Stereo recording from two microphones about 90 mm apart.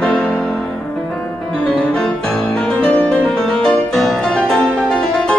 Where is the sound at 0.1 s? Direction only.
15° left (ahead or behind).